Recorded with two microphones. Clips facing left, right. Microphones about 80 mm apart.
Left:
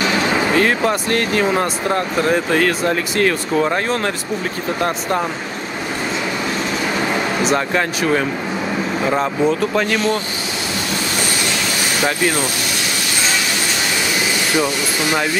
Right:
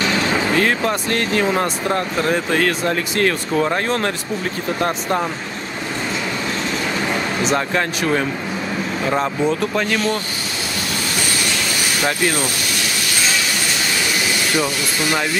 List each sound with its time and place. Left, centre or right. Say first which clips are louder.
0.0 s a sound: left 2 dB; centre
0.6 s speech: left 2 dB; centre
7.3 s speech: left 1 dB; centre
14.6 s speech: left 2 dB; centre